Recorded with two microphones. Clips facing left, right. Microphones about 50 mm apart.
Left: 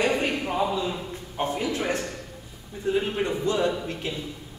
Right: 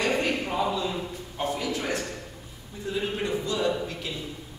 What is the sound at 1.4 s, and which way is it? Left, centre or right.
A man's voice, left.